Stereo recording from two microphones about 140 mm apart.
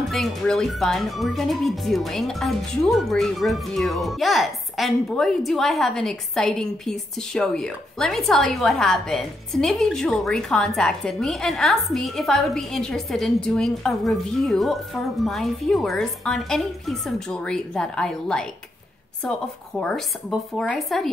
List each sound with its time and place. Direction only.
0.1 s speech: centre (ahead or behind)
19.8 s speech: 5° left (ahead or behind)